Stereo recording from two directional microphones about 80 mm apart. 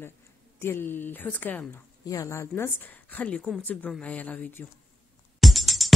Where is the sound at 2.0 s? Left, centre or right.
Left.